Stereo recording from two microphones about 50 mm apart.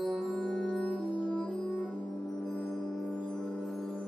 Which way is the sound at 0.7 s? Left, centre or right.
Centre.